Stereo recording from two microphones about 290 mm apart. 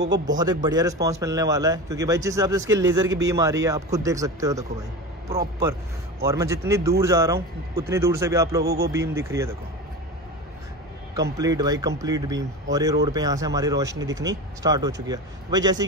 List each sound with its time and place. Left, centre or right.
0.3 s a man's voice: centre
8.6 s a man's voice: right
8.9 s a man's voice: centre
11.3 s a man's voice: centre